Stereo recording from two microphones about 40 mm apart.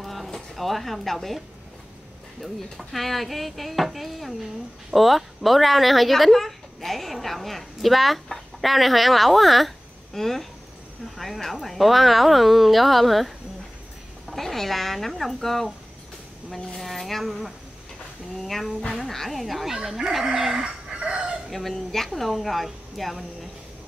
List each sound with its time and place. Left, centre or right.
0.0 s a sound: centre
2.4 s speech: centre
14.3 s speech: centre
18.9 s speech: centre
20.9 s chicken: right
21.5 s speech: centre